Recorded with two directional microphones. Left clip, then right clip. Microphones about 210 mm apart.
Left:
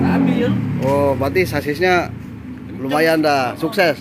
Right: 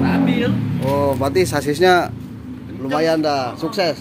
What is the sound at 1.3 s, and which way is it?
Speech, 10° right (ahead or behind).